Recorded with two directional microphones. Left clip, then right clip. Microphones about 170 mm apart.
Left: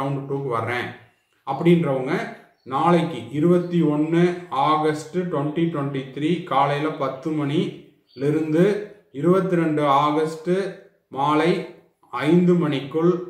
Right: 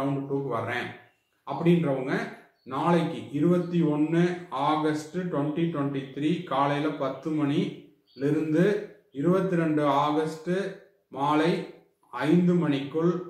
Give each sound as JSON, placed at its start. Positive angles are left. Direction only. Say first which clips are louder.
{"t": 1.4, "sound": "a man's voice", "louder": "left 6 dB", "side_deg": 25}